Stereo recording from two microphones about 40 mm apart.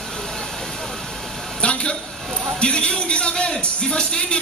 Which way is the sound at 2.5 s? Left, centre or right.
Left.